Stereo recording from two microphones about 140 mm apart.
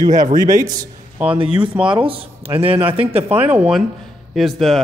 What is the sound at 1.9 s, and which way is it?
Speech, 40° right (ahead or behind).